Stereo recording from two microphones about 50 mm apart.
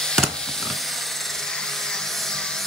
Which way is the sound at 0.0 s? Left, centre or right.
Centre.